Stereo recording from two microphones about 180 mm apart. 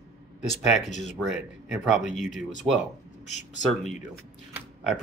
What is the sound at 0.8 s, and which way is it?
Speech, 40° left (ahead or behind).